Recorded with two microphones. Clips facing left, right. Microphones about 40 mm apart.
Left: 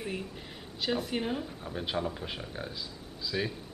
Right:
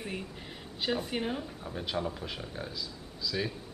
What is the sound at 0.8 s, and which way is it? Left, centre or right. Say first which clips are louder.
Speech: left 1 dB; centre.